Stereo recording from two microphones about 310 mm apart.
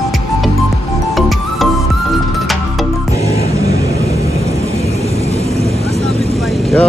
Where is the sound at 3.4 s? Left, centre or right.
Centre.